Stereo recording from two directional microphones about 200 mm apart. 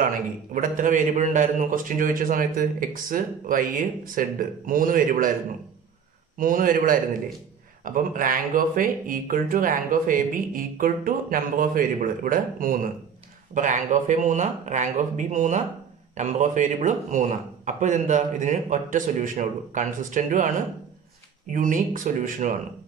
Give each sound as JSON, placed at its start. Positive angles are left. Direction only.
{"t": 0.0, "sound": "a man's voice", "side_deg": -45}
{"t": 6.3, "sound": "a man's voice", "side_deg": -45}